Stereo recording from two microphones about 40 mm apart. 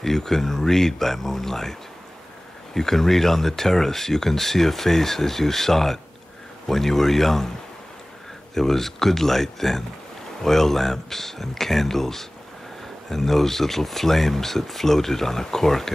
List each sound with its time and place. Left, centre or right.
0.0 s speech: centre
8.5 s speech: centre